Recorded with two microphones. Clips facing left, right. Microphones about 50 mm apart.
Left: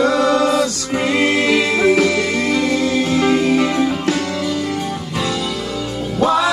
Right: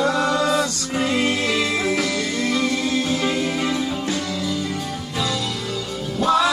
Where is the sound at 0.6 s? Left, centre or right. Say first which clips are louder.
Left 4 dB; left.